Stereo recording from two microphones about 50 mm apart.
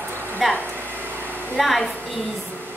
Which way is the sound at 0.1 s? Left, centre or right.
Right.